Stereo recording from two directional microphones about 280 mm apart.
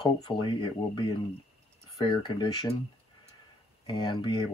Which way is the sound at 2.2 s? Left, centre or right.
Centre.